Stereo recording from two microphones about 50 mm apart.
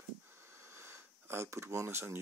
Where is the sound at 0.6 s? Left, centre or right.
Right.